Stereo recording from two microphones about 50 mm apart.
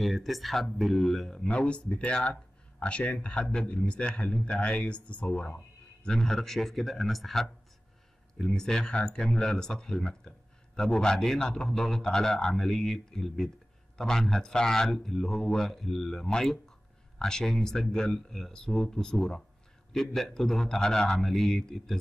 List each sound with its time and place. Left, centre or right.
0.0 s speech: centre
1.4 s speech: left
6.0 s a man's voice: centre